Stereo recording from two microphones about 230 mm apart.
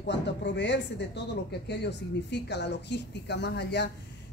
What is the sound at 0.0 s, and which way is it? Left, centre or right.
Speech, left.